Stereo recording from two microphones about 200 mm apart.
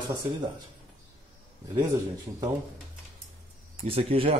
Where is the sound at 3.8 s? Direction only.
25° right (ahead or behind).